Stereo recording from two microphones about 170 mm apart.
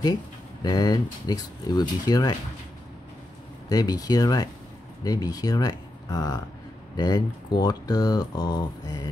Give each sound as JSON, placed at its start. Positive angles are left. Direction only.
{"t": 0.6, "sound": "speech", "side_deg": 25}
{"t": 3.6, "sound": "speech", "side_deg": 20}